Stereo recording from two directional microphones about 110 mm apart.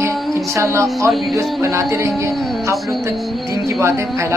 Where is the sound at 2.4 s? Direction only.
Centre (ahead or behind).